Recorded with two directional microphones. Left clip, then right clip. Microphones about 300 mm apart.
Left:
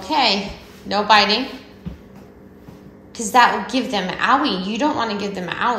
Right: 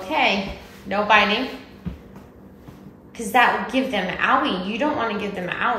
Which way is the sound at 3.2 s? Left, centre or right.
Centre.